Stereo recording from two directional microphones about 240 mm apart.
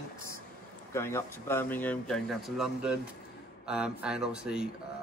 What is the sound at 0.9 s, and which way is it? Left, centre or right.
Speech, centre.